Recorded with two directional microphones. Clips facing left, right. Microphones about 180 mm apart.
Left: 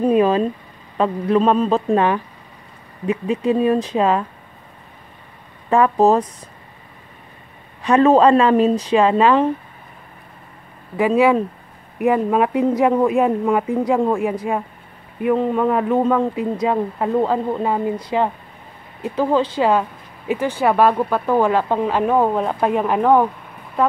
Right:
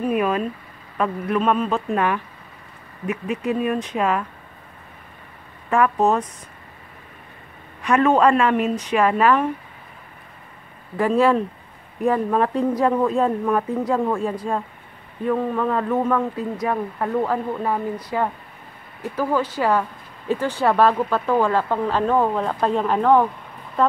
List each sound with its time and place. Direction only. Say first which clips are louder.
0.0 s speech: left 6 dB; 30° left (ahead or behind)
5.7 s speech: left 4 dB; 35° left (ahead or behind)
7.8 s speech: left 4 dB; 30° left (ahead or behind)
11.0 s speech: left 3 dB; 15° left (ahead or behind)